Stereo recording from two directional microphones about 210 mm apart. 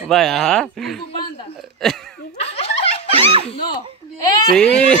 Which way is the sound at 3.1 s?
25° right (ahead or behind).